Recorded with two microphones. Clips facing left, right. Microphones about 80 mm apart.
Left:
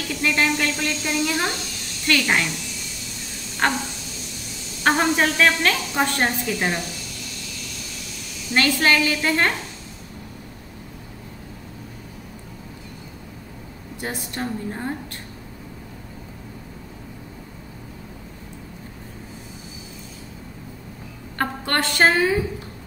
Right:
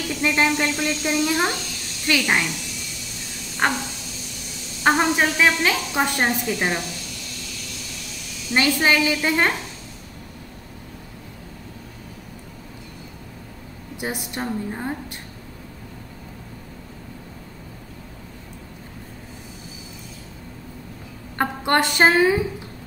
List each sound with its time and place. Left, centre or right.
0.2 s a woman's voice: centre
3.6 s a woman's voice: centre
4.8 s a woman's voice: centre
8.5 s a woman's voice: centre
13.9 s a woman's voice: centre
21.4 s a woman's voice: centre